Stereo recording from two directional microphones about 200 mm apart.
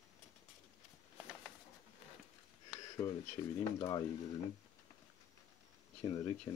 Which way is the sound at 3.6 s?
20° left (ahead or behind).